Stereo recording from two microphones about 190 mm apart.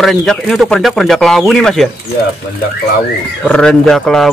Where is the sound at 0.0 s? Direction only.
Centre (ahead or behind).